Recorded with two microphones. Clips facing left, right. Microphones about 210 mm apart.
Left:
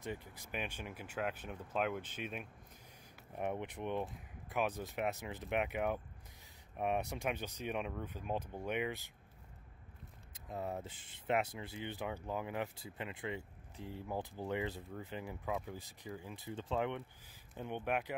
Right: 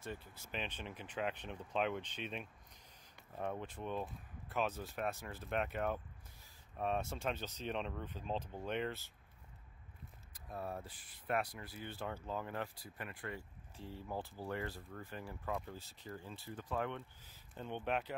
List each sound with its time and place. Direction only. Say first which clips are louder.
0.0 s speech: left 3 dB; 15° left (ahead or behind)
3.3 s speech: left 3 dB; 20° left (ahead or behind)
10.3 s speech: left 3 dB; 20° left (ahead or behind)
15.4 s speech: left 1 dB; 5° left (ahead or behind)